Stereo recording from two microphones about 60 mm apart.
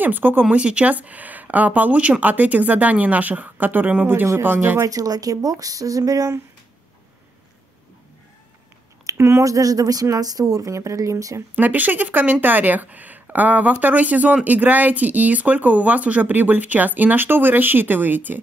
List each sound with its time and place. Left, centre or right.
0.0 s speech: right
0.6 s speech: centre; by 4.8 s right
4.8 s speech: right
9.1 s a sound: right
9.4 s speech: right
11.5 s speech: right